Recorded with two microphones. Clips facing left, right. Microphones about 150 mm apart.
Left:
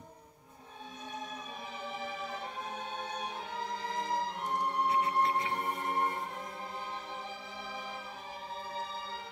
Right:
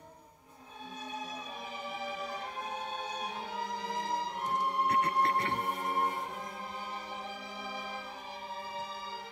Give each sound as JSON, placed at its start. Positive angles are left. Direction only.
{"t": 5.0, "sound": "music", "side_deg": -65}